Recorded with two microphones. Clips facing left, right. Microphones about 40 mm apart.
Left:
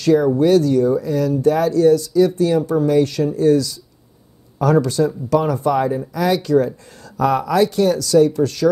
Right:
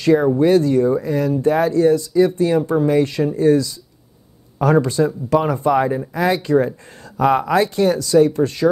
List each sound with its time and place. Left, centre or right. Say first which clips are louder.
0.0 s speech: even; right